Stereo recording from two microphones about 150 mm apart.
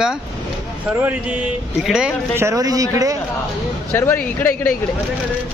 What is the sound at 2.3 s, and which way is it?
Speech, 20° right (ahead or behind).